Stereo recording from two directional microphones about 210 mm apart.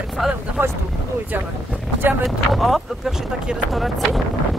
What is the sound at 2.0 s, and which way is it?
Speech, centre (ahead or behind).